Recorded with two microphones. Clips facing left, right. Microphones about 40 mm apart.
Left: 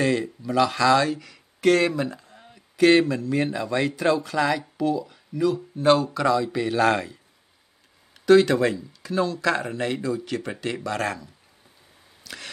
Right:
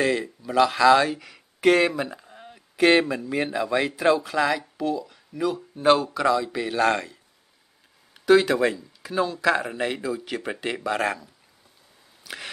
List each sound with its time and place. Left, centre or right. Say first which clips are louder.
0.0 s speech: left 1 dB; centre
5.4 s speech: left 2 dB; centre
12.2 s a sound: right 2 dB; centre